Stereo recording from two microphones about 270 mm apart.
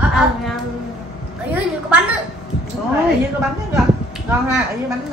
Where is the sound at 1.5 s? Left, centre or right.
Centre.